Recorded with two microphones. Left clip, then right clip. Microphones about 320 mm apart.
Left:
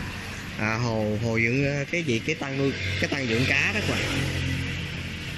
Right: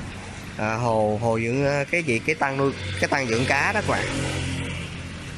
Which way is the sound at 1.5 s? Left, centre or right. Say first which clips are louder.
Right 3 dB; right.